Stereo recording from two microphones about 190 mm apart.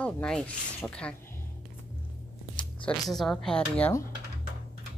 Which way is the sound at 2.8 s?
Centre (ahead or behind).